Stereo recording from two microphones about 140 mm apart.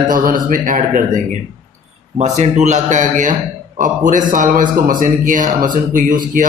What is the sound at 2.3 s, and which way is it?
Speech, 55° right (ahead or behind).